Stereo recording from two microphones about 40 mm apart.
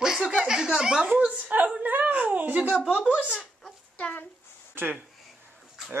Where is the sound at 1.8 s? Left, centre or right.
Right.